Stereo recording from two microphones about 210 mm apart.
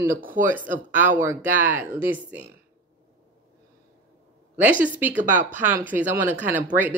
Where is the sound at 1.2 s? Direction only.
10° right (ahead or behind).